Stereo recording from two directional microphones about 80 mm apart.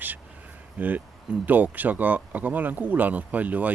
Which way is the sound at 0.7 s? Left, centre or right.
Right.